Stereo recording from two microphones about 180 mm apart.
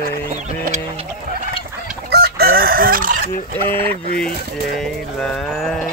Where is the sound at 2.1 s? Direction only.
60° right (ahead or behind).